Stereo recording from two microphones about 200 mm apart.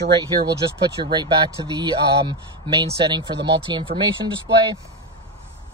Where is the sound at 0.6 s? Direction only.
20° right (ahead or behind).